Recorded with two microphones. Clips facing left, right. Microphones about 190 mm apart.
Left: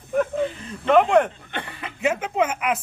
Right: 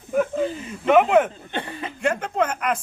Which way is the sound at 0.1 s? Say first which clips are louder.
Right 1 dB; 5° right (ahead or behind).